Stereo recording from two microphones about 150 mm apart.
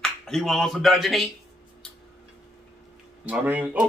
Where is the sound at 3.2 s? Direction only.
10° right (ahead or behind).